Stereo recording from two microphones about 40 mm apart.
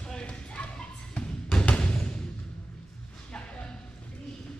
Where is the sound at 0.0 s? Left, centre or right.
Left.